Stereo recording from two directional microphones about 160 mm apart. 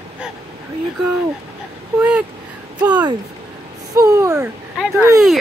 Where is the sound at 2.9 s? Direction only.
25° right (ahead or behind).